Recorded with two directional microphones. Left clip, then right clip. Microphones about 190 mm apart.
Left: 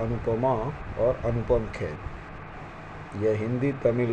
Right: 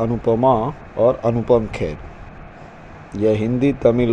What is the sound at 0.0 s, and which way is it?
A man's voice, 35° right (ahead or behind).